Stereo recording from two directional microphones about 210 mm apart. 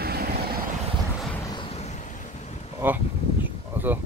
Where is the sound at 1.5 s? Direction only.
30° left (ahead or behind).